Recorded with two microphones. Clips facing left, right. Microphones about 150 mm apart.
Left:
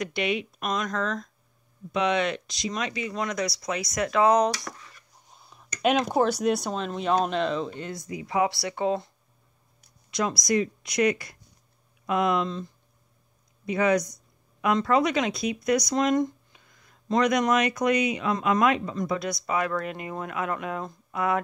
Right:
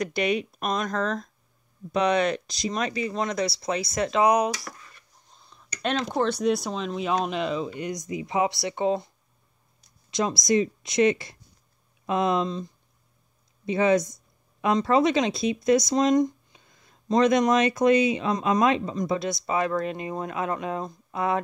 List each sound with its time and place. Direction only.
0.0 s speech: 40° right (ahead or behind)
4.2 s speech: 15° right (ahead or behind)
5.3 s speech: 10° left (ahead or behind); by 9.1 s 20° right (ahead or behind)
10.1 s speech: 25° right (ahead or behind)
13.7 s speech: 25° right (ahead or behind)